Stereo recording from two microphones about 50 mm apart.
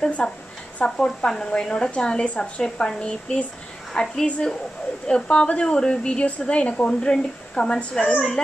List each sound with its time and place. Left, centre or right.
0.2 s a woman's voice: centre